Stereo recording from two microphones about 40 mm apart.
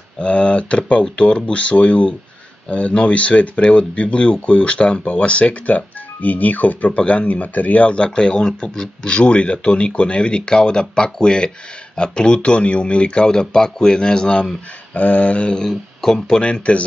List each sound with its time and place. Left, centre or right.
0.2 s speech: left
7.0 s speech: left
7.2 s speech: left
15.0 s speech: left; by 16.4 s centre
16.4 s speech: left